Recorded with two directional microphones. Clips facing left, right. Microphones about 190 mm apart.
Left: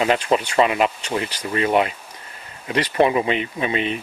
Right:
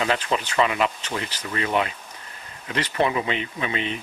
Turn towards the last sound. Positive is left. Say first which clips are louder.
# left 5 dB
turn(degrees=20)  # may be behind; listen again after turning